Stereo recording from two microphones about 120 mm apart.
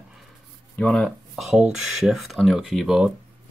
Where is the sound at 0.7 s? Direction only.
5° left (ahead or behind).